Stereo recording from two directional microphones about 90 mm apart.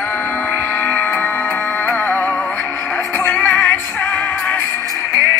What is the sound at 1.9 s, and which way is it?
Music, 20° left (ahead or behind).